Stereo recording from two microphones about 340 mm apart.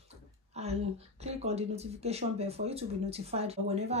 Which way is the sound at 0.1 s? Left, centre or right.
Centre.